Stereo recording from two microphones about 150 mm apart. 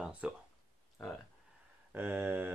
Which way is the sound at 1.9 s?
15° right (ahead or behind).